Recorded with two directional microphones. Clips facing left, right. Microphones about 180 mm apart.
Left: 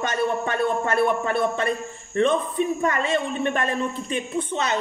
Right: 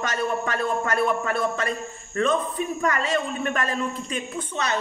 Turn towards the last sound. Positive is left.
turn(degrees=25)  # may be behind; listen again after turning